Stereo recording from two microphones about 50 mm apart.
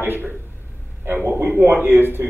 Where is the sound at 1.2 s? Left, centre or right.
Right.